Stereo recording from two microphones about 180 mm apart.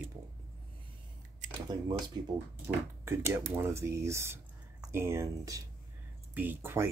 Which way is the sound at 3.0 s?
15° right (ahead or behind).